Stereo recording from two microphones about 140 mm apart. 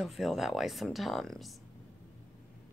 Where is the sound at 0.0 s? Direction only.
Centre (ahead or behind).